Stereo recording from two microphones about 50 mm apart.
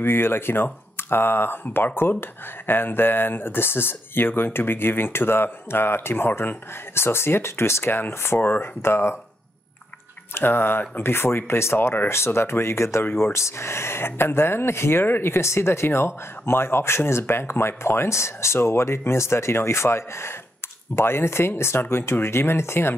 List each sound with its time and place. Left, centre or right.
0.0 s speech: left
8.4 s speech: left
8.8 s speech: left
10.3 s speech: left